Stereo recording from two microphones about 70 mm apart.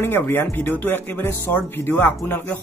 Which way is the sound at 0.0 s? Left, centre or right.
Left.